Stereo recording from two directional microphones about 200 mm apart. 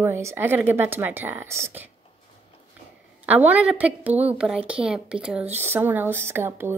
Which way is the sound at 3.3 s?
10° right (ahead or behind).